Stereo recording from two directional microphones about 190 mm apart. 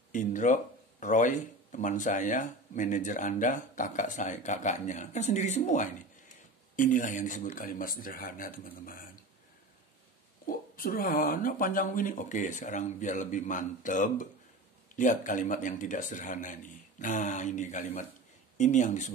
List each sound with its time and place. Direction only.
0.1 s speech: 40° left (ahead or behind)
10.4 s speech: 50° left (ahead or behind)